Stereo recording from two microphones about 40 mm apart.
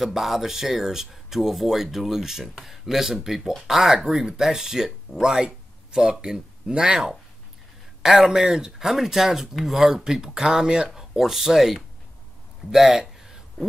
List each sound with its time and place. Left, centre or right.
0.0 s speech: centre
8.0 s speech: centre
12.7 s a sound: centre